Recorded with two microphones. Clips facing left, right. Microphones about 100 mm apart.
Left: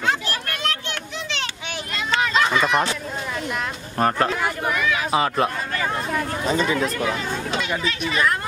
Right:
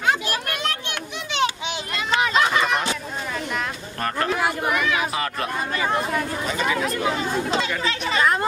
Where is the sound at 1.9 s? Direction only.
15° right (ahead or behind).